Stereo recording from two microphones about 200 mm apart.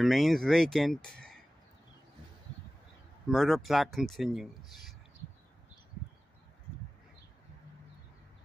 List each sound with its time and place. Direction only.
0.0 s speech: centre (ahead or behind)
3.3 s speech: centre (ahead or behind)